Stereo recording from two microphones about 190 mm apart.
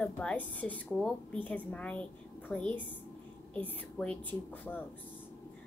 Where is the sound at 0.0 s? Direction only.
5° left (ahead or behind).